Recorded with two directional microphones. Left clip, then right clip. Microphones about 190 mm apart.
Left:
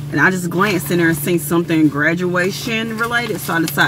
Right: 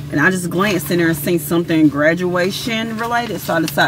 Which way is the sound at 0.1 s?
25° right (ahead or behind).